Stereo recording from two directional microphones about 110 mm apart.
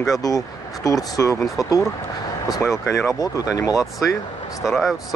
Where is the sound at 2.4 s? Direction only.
35° left (ahead or behind).